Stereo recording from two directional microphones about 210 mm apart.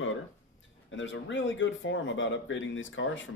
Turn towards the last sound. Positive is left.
turn(degrees=65)  # may be behind; listen again after turning